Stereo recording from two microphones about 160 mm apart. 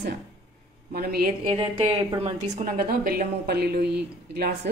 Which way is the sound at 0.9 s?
75° right (ahead or behind).